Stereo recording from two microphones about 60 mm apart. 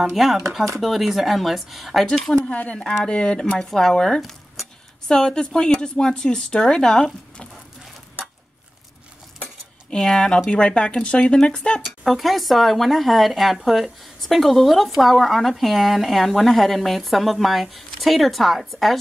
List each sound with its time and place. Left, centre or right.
0.1 s speech: centre
2.5 s speech: left
9.8 s speech: centre
12.0 s speech: centre